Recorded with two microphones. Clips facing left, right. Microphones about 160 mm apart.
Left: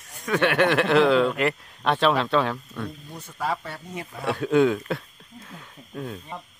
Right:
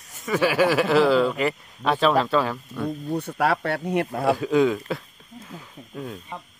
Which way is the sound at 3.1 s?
65° right (ahead or behind).